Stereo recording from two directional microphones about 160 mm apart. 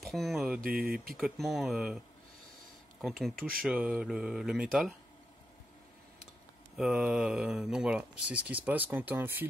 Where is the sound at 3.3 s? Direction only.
65° right (ahead or behind).